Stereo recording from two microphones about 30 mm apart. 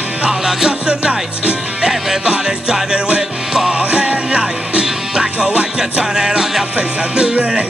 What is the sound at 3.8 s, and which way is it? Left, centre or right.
Music, right.